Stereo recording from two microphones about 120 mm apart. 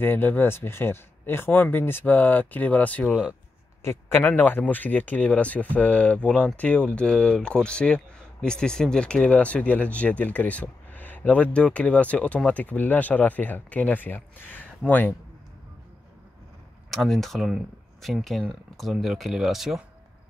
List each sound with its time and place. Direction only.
0.0 s speech: 15° left (ahead or behind)
3.1 s speech: 5° right (ahead or behind)
3.8 s speech: 20° left (ahead or behind)
16.9 s speech: centre (ahead or behind)